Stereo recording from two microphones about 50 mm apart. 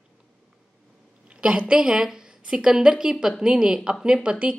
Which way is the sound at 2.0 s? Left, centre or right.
Centre.